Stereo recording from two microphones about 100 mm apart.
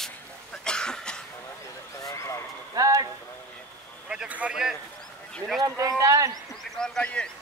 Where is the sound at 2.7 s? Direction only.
35° right (ahead or behind).